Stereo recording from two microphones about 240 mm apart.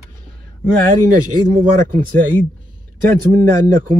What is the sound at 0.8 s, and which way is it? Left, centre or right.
Speech, right.